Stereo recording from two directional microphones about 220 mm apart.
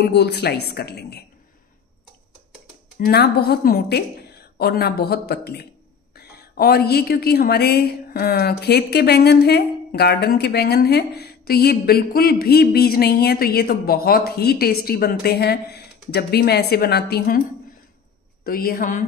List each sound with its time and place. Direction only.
0.0 s a woman's voice: 50° left (ahead or behind)
3.1 s a woman's voice: 45° left (ahead or behind)
18.4 s a woman's voice: 40° left (ahead or behind)